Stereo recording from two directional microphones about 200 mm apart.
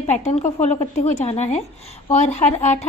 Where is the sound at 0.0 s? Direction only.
35° left (ahead or behind).